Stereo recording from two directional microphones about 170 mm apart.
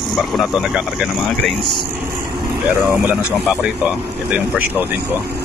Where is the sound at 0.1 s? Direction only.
Centre (ahead or behind).